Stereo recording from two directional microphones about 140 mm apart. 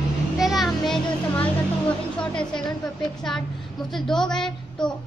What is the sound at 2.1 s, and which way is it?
Speech, 5° left (ahead or behind).